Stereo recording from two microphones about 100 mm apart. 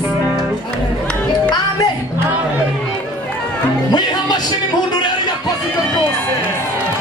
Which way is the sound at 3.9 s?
45° left (ahead or behind).